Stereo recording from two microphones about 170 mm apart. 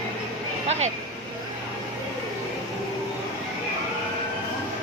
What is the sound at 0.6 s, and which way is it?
Speech, 40° right (ahead or behind).